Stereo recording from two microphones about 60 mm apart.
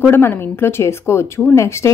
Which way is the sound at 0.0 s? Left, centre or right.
Left.